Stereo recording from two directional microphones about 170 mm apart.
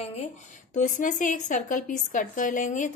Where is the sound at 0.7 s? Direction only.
50° left (ahead or behind).